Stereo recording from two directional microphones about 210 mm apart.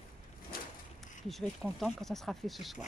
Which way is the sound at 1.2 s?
Centre (ahead or behind).